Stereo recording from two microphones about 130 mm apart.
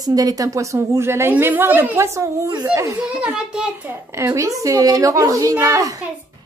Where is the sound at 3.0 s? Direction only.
10° right (ahead or behind).